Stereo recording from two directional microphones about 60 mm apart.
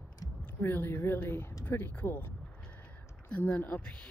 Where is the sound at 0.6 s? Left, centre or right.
Left.